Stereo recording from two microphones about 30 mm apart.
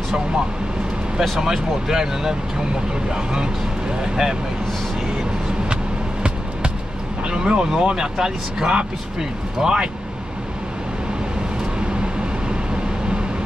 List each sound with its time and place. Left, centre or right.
1.4 s speech: centre
7.2 s speech: right